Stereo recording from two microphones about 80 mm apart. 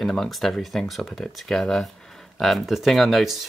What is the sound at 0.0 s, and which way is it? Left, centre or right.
Speech, centre.